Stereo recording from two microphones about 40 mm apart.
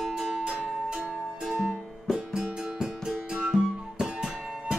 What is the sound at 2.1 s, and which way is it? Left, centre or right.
Music, centre.